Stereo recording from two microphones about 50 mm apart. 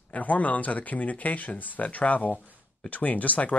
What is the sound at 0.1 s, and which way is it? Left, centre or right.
Speech, left.